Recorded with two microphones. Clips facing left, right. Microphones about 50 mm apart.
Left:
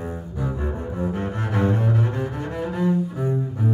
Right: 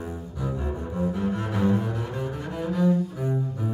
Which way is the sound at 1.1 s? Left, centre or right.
Left.